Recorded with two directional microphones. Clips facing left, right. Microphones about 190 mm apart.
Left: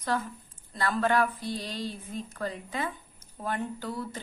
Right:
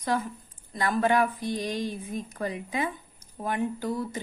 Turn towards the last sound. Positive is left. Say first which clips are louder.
# right 5 dB
turn(degrees=-15)  # may be behind; listen again after turning